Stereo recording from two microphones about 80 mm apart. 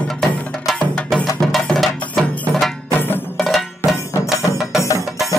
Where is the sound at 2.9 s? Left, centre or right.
Left.